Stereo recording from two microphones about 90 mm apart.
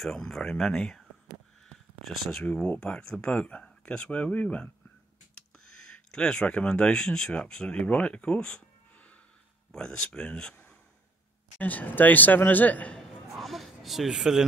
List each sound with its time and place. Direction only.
0.0 s speech: 5° left (ahead or behind)
2.0 s speech: centre (ahead or behind)
2.4 s speech: 15° left (ahead or behind)
5.7 s speech: 10° left (ahead or behind)
9.7 s speech: 10° left (ahead or behind)
11.5 s a man's voice: 20° left (ahead or behind)
12.9 s a sound: centre (ahead or behind)